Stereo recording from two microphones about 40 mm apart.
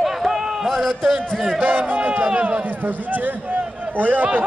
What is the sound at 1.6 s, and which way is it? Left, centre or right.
Speech, right.